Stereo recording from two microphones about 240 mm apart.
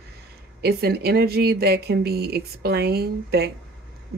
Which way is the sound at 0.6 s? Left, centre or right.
Right.